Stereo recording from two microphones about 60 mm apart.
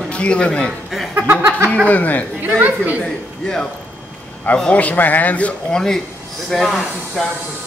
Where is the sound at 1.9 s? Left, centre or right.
Left.